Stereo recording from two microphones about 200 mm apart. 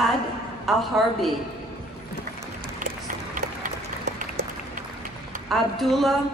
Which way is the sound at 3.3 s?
40° right (ahead or behind).